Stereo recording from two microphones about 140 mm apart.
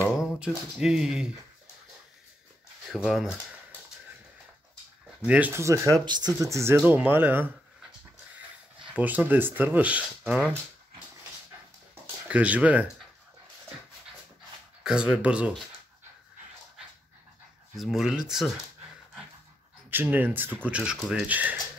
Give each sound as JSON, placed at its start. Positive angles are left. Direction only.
{"t": 0.2, "sound": "speech", "side_deg": -5}
{"t": 2.9, "sound": "speech", "side_deg": 0}
{"t": 5.2, "sound": "speech", "side_deg": -10}
{"t": 8.8, "sound": "speech", "side_deg": -10}
{"t": 11.9, "sound": "a sound", "side_deg": -10}
{"t": 14.8, "sound": "speech", "side_deg": -5}
{"t": 17.7, "sound": "speech", "side_deg": 0}
{"t": 19.9, "sound": "speech", "side_deg": -15}